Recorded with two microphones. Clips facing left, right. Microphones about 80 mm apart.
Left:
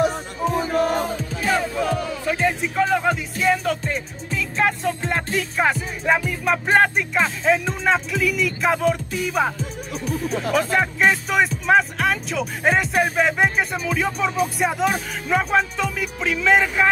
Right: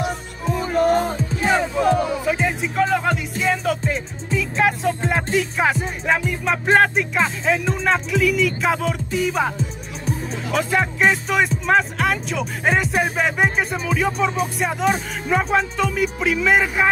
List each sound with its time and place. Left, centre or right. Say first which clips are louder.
1.4 s music: right 3 dB; right
2.2 s speech: even; centre
10.5 s speech: right 1 dB; centre